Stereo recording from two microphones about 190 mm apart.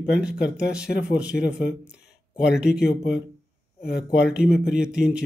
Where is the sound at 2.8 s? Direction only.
60° left (ahead or behind).